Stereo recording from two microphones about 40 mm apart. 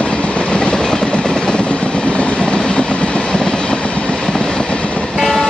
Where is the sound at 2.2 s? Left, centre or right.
Left.